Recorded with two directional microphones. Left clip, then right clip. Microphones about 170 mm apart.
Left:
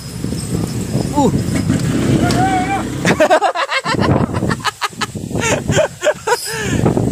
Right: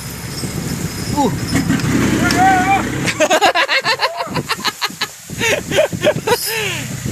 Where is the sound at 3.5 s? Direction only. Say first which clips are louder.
Right 2 dB; 20° right (ahead or behind).